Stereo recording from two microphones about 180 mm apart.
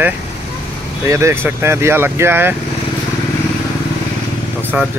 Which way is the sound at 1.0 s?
15° right (ahead or behind).